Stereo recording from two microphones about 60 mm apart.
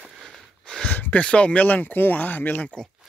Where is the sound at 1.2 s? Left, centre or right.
Centre.